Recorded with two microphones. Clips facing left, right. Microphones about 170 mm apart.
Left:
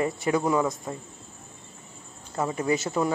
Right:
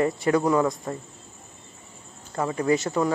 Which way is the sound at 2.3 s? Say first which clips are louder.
Right 2 dB; 20° left (ahead or behind).